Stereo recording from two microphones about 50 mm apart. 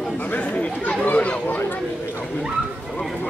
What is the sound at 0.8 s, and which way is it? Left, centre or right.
Chatter, left.